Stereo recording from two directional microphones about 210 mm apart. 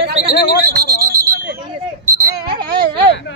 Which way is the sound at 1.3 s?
50° right (ahead or behind).